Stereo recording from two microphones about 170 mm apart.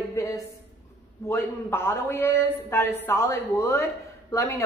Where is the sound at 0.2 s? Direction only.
15° left (ahead or behind).